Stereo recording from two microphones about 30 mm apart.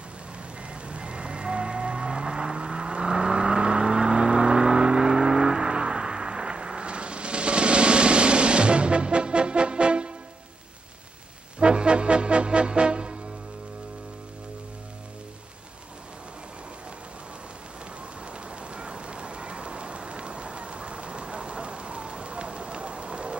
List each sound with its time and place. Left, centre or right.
0.8 s vehicle: right
11.6 s music: right
18.2 s rain on surface: right